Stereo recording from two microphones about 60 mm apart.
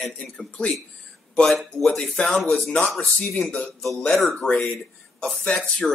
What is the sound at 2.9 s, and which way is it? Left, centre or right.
Speech, left.